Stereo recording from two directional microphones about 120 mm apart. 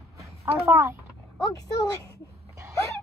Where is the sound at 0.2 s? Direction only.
25° right (ahead or behind).